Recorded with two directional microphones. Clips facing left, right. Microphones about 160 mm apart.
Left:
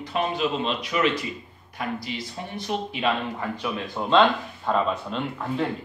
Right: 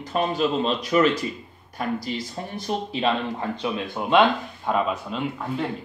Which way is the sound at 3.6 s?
20° right (ahead or behind).